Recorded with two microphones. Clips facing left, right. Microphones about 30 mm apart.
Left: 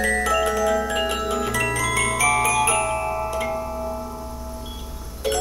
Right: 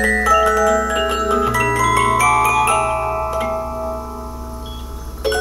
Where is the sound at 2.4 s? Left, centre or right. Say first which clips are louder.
Right 5 dB; right.